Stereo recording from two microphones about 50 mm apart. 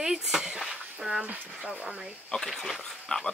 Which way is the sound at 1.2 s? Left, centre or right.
Right.